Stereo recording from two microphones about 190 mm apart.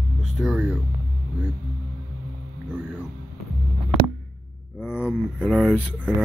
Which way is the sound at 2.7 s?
5° right (ahead or behind).